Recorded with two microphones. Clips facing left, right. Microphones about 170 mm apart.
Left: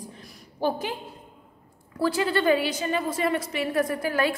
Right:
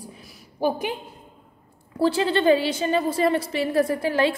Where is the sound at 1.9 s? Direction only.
25° right (ahead or behind).